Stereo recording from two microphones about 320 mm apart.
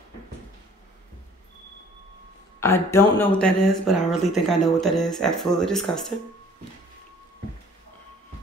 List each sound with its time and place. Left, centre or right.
2.6 s speech: centre